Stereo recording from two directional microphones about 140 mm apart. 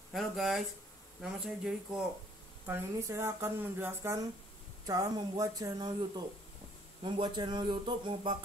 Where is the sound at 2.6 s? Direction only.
20° right (ahead or behind).